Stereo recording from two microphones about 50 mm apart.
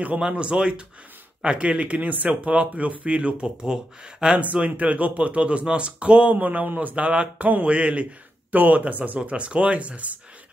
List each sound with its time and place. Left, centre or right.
0.3 s speech: right
4.4 s speech: right